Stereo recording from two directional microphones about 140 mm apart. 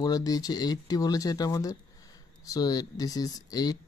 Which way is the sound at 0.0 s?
25° left (ahead or behind).